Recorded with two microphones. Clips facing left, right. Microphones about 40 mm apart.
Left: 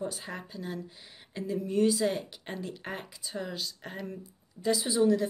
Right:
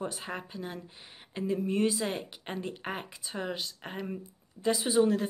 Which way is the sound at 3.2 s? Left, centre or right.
Right.